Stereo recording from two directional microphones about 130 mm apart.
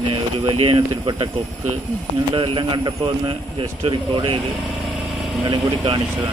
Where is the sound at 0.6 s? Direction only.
40° right (ahead or behind).